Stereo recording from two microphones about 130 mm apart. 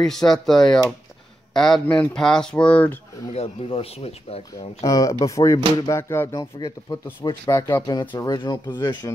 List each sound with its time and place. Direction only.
0.0 s speech: 5° left (ahead or behind)
3.3 s speech: 50° left (ahead or behind)
4.8 s speech: 25° left (ahead or behind)